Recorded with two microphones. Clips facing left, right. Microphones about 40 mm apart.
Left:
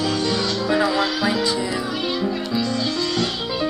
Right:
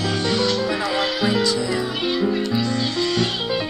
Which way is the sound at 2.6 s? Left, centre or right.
Right.